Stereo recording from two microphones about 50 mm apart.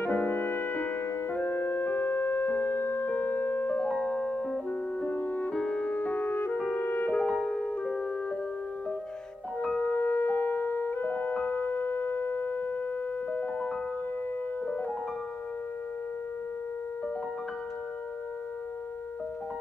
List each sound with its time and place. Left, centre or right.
0.0 s music: left
3.1 s music: left
3.6 s music: left
5.0 s music: left
5.5 s music: left
7.2 s music: centre
9.8 s music: left